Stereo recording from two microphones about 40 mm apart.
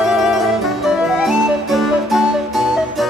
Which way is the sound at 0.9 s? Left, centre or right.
Centre.